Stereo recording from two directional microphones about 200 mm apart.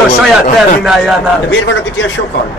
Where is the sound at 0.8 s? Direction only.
Centre (ahead or behind).